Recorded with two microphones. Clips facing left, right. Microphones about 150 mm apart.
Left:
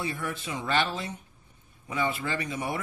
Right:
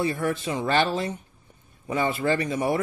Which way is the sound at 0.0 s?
40° right (ahead or behind).